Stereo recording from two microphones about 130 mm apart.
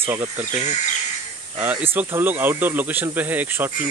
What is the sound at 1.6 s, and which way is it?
Speech, 10° right (ahead or behind).